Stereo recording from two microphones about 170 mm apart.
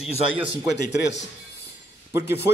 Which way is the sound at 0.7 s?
90° left.